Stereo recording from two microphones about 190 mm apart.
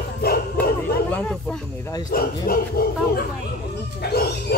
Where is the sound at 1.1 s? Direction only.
5° left (ahead or behind).